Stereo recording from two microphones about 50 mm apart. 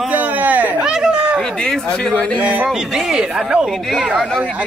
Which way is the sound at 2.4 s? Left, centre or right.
Right.